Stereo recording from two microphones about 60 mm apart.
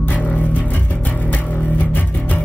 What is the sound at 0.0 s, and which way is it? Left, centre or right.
Music, left.